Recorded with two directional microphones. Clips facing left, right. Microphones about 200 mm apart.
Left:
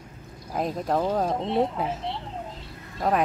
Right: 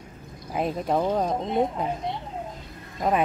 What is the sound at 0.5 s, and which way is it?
Speech, 5° right (ahead or behind).